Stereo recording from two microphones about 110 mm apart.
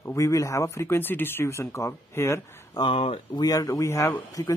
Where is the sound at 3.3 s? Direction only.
35° left (ahead or behind).